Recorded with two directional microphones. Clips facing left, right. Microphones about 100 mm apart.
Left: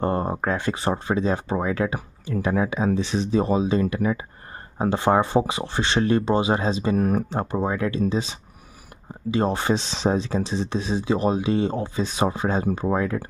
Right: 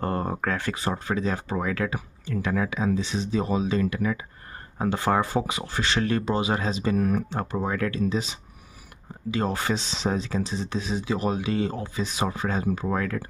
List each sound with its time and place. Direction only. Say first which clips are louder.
0.0 s speech: left 4 dB; 25° left (ahead or behind)
3.0 s speech: left 4 dB; 65° left (ahead or behind)
3.3 s speech: left 5 dB; 35° left (ahead or behind)
7.0 s speech: left 2 dB; 40° left (ahead or behind)
7.3 s speech: left 3 dB; 20° left (ahead or behind)
9.3 s speech: left 4 dB; 25° left (ahead or behind)